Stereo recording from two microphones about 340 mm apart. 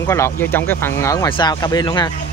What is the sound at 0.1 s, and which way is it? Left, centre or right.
Speech, centre.